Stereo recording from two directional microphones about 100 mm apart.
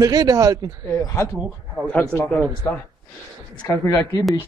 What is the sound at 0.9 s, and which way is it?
Speech, 30° left (ahead or behind).